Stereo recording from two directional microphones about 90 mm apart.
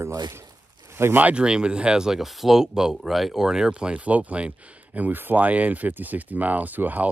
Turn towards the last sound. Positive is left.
turn(degrees=-20)  # may be behind; listen again after turning